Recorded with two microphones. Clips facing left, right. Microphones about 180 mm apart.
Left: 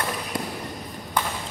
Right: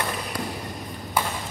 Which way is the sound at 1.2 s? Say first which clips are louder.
Right 1 dB; 10° right (ahead or behind).